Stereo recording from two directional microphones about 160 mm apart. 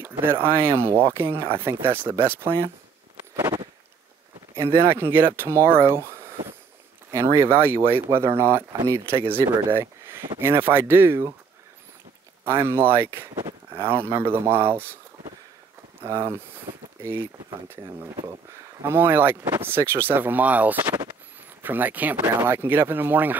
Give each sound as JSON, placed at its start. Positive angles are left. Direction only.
{"t": 0.0, "sound": "speech", "side_deg": -15}
{"t": 3.3, "sound": "a sound", "side_deg": -20}
{"t": 4.6, "sound": "speech", "side_deg": -15}
{"t": 12.4, "sound": "speech", "side_deg": -15}
{"t": 13.3, "sound": "a sound", "side_deg": -25}
{"t": 13.7, "sound": "speech", "side_deg": -15}
{"t": 16.3, "sound": "speech", "side_deg": -15}